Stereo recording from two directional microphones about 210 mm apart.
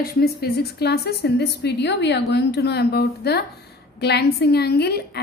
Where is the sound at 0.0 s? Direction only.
50° left (ahead or behind).